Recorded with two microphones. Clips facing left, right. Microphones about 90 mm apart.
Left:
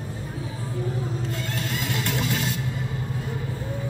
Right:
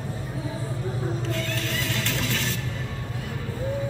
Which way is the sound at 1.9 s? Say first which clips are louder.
Left 2 dB; 15° left (ahead or behind).